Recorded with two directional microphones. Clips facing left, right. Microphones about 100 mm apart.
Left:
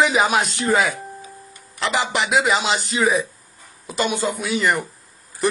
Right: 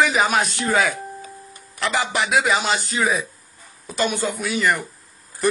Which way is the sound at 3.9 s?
15° left (ahead or behind).